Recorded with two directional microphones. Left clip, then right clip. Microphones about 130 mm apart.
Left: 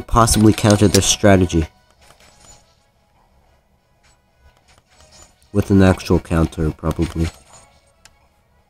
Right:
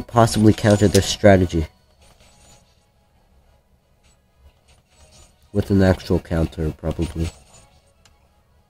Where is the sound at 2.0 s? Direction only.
10° right (ahead or behind).